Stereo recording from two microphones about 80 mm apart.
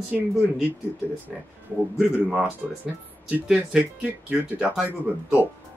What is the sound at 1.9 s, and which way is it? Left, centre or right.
Speech, centre.